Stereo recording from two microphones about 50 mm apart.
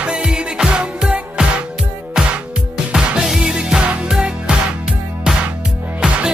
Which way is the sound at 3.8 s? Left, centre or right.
Right.